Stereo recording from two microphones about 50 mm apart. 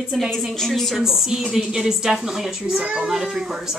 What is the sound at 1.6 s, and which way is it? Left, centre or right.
A woman's voice, centre.